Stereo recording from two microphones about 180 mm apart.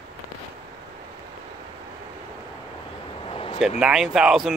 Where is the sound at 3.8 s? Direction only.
5° right (ahead or behind).